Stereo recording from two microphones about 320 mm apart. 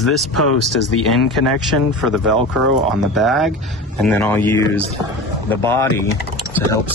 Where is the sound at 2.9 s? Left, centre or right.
Centre.